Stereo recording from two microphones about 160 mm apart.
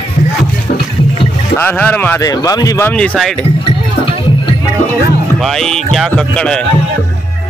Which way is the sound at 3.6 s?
30° left (ahead or behind).